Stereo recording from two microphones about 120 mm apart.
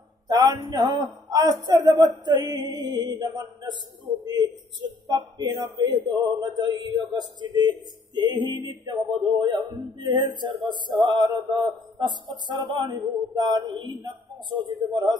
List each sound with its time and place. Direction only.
0.3 s speech: 30° right (ahead or behind)